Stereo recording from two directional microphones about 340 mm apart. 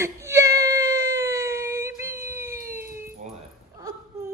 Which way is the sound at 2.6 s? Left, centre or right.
Right.